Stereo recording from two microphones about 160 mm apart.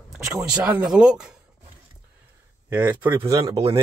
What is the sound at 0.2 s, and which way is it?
Speech, 15° right (ahead or behind).